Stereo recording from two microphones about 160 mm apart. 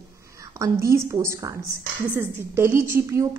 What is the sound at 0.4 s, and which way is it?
A woman's voice, 20° right (ahead or behind).